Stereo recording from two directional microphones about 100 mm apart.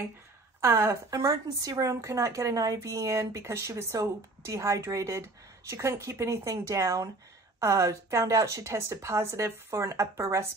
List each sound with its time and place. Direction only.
0.6 s a woman's voice: 30° right (ahead or behind)